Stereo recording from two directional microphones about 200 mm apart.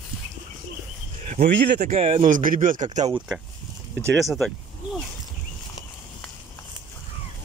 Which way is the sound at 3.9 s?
Centre (ahead or behind).